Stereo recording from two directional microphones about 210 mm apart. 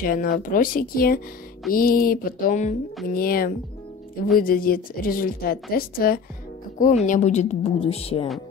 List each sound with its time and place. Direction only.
0.0 s a woman's voice: 40° left (ahead or behind)
7.1 s a woman's voice: 35° left (ahead or behind)